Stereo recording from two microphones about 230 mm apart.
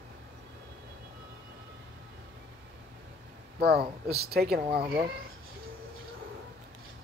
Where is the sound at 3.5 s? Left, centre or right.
Right.